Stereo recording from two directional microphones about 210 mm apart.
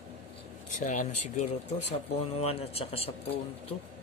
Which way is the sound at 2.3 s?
30° left (ahead or behind).